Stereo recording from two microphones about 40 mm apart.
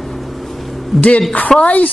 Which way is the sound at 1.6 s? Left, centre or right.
Left.